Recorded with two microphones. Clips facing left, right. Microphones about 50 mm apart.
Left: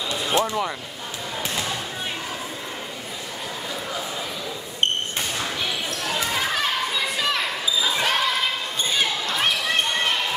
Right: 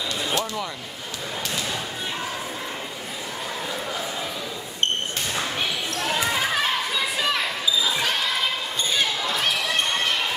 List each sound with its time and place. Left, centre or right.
0.3 s speech: left
7.2 s basketball bounce: centre